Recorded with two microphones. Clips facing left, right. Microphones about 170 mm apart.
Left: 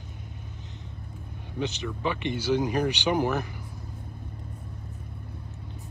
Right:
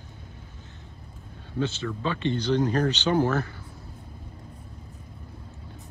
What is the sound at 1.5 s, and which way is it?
Speech, 15° left (ahead or behind).